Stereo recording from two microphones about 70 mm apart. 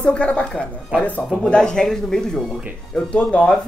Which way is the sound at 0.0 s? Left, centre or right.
Centre.